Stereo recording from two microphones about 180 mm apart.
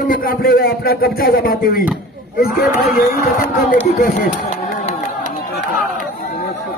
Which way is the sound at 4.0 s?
45° left (ahead or behind).